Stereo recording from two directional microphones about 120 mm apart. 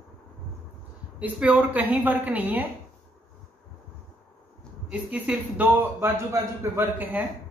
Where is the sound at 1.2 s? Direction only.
15° right (ahead or behind).